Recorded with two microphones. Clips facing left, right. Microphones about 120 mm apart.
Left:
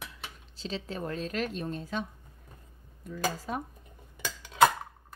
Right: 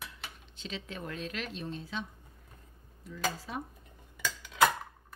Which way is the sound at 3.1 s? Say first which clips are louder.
Left 4 dB; 50° left (ahead or behind).